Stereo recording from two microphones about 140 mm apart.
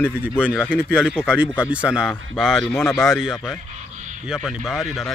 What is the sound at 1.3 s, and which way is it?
Speech, 10° right (ahead or behind).